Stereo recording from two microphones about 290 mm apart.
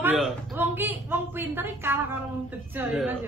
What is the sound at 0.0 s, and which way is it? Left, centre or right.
A woman's voice, centre.